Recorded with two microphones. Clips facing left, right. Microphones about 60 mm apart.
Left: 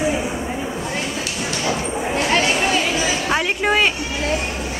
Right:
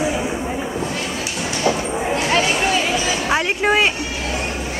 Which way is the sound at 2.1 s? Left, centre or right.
Centre.